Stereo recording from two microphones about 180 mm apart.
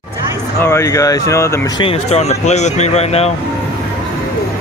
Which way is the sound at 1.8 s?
35° left (ahead or behind).